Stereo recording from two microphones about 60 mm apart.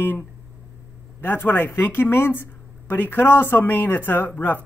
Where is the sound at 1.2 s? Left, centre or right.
Left.